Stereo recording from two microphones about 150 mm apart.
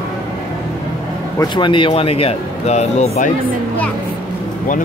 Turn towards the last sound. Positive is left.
turn(degrees=50)  # may be behind; listen again after turning